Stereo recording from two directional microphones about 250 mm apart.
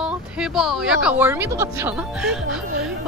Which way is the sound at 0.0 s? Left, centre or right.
Centre.